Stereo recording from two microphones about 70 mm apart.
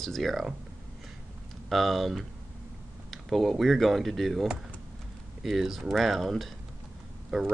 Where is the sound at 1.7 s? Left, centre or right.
Centre.